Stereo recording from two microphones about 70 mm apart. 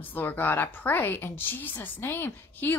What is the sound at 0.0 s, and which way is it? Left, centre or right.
A woman's voice, left.